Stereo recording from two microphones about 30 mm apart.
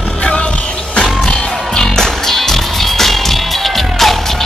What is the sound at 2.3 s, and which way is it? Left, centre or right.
Music, centre.